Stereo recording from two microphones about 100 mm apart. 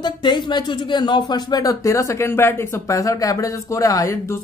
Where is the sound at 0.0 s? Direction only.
50° left (ahead or behind).